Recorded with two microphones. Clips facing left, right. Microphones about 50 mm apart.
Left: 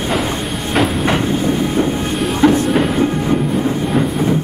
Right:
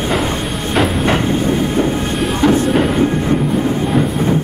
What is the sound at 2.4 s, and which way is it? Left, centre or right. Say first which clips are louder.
Train: left 1 dB; centre.